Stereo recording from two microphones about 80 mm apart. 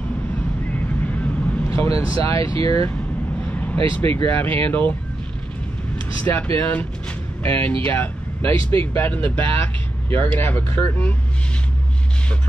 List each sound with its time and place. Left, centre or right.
1.0 s vehicle: centre
1.7 s speech: left
3.9 s speech: left
6.2 s speech: left